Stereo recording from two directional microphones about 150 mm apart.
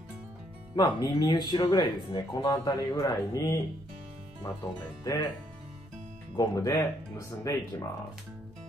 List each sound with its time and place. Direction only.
0.7 s speech: 30° left (ahead or behind)
6.3 s speech: 25° left (ahead or behind)